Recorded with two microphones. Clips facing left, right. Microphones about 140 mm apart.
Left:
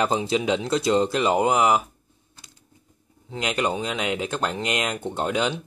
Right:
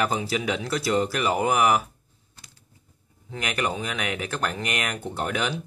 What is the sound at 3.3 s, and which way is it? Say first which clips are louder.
Speech: left 3 dB; 20° left (ahead or behind).